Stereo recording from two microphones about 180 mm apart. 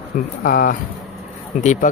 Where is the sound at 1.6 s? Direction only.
40° left (ahead or behind).